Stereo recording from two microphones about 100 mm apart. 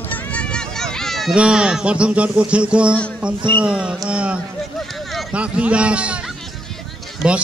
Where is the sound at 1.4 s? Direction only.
10° right (ahead or behind).